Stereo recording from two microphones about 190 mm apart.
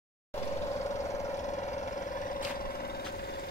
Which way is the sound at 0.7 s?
15° left (ahead or behind).